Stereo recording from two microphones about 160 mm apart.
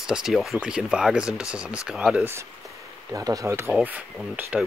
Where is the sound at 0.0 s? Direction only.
5° right (ahead or behind).